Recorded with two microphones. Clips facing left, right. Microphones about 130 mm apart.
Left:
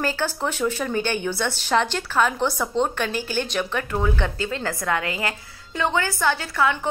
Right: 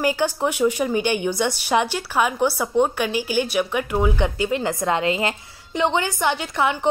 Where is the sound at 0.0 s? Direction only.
15° right (ahead or behind).